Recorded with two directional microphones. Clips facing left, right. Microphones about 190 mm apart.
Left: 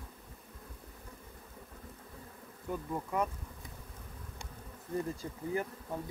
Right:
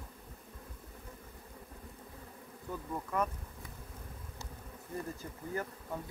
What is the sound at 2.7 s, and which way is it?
Speech, 15° left (ahead or behind).